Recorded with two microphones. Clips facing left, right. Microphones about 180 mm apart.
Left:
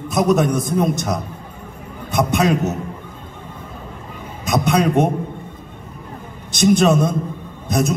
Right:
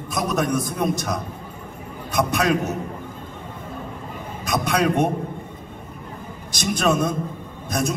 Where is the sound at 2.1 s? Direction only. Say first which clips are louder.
Left 3 dB; 25° left (ahead or behind).